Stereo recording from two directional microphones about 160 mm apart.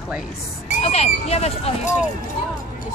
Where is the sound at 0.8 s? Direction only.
40° left (ahead or behind).